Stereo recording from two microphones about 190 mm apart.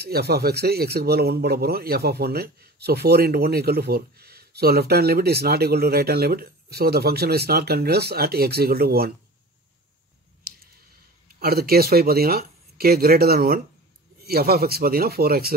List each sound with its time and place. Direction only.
0.0 s a man's voice: 60° right (ahead or behind)
11.2 s speech: 50° right (ahead or behind)